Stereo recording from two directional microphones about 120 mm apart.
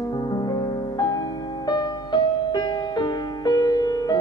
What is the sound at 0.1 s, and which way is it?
Music, 40° left (ahead or behind).